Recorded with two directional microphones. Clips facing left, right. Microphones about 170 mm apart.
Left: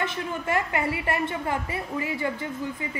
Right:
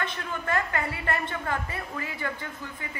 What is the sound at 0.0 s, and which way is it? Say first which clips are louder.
A woman's voice: left 3 dB; 20° left (ahead or behind).